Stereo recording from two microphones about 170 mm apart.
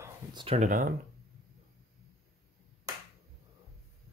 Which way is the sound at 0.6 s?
50° right (ahead or behind).